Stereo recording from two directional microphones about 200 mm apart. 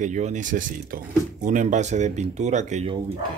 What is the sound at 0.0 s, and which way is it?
Speech, 35° right (ahead or behind).